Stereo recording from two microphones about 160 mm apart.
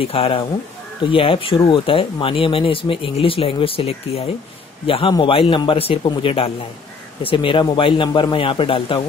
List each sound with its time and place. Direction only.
0.0 s speech: 40° left (ahead or behind)